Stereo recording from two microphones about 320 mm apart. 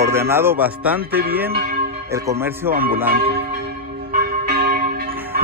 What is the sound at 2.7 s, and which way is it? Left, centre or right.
Church bell, right.